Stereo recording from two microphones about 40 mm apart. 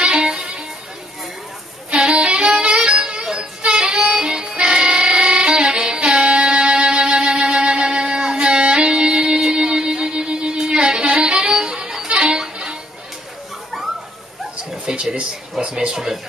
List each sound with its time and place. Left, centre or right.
0.0 s music: right
2.1 s music: right
14.9 s a sound: right